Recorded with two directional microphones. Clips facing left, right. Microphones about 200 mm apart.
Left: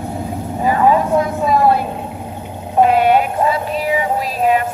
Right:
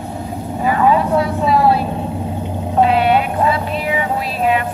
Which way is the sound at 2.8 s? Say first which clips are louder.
Left 2 dB; 45° left (ahead or behind).